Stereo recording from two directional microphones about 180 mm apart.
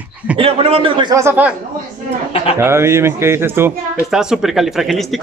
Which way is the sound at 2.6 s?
15° right (ahead or behind).